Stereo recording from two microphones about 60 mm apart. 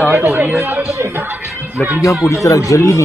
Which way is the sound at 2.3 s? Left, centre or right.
Left.